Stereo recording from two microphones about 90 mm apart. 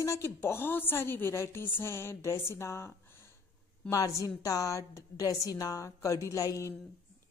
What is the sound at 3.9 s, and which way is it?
A woman's voice, 35° left (ahead or behind).